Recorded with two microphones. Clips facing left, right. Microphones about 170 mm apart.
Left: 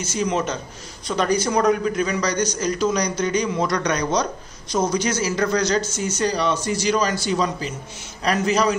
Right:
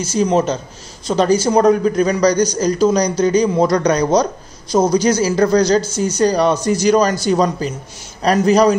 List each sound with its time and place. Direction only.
0.0 s a man's voice: 35° right (ahead or behind)